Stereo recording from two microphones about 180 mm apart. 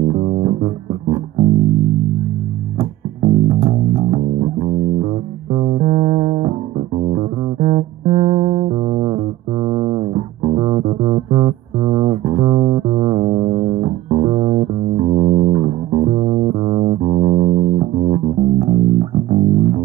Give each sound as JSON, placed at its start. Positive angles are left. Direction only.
{"t": 0.1, "sound": "music", "side_deg": -30}
{"t": 2.8, "sound": "music", "side_deg": -35}